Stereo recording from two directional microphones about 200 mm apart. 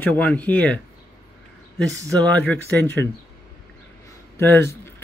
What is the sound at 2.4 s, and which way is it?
Speech, 10° left (ahead or behind).